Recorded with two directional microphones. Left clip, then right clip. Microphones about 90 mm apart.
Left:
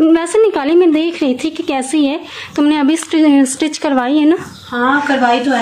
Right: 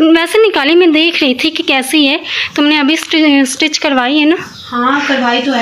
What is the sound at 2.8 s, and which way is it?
Speech, 35° left (ahead or behind).